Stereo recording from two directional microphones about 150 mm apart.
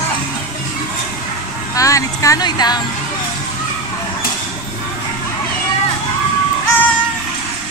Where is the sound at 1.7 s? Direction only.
20° left (ahead or behind).